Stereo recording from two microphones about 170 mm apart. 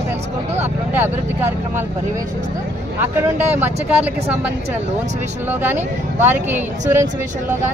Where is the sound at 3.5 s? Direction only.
10° right (ahead or behind).